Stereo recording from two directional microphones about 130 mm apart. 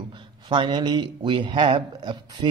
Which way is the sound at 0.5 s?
35° right (ahead or behind).